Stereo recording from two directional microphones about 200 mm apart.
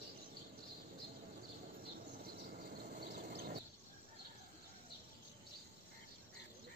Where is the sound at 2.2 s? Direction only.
50° right (ahead or behind).